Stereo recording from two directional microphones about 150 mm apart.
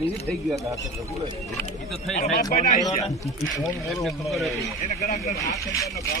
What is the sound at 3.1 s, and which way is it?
Speech, centre (ahead or behind).